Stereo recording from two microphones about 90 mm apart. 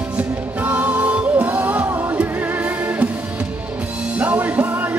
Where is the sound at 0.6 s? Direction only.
15° right (ahead or behind).